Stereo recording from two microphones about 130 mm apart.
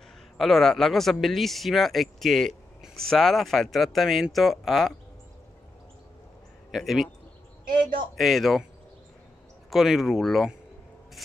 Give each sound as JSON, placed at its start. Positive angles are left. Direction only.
{"t": 0.4, "sound": "speech", "side_deg": 0}
{"t": 6.7, "sound": "speech", "side_deg": 0}
{"t": 8.2, "sound": "speech", "side_deg": 0}
{"t": 9.7, "sound": "speech", "side_deg": 0}